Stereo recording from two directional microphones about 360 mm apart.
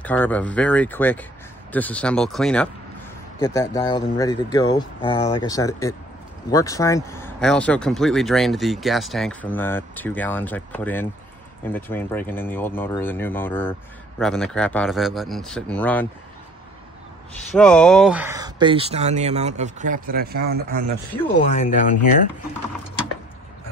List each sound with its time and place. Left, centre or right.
0.0 s speech: centre
17.6 s speech: centre; by 20.8 s right
21.4 s speech: left